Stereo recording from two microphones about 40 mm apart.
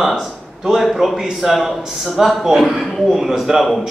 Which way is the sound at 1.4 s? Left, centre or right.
Centre.